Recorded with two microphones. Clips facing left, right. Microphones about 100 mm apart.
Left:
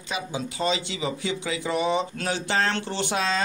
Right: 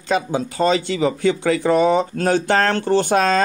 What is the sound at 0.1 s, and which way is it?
Speech, 55° right (ahead or behind).